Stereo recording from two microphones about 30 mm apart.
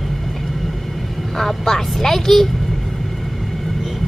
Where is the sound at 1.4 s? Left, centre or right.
Centre.